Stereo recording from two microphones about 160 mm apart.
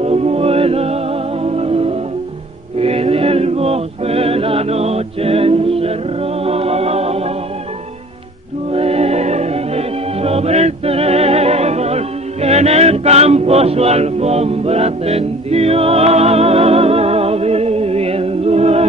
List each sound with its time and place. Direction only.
0.0 s music: 40° right (ahead or behind)
2.8 s choir: 40° right (ahead or behind)
6.4 s music: 40° right (ahead or behind)
8.7 s music: 40° right (ahead or behind)